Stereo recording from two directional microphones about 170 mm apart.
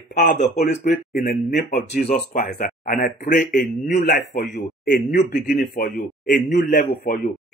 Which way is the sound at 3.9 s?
60° left (ahead or behind).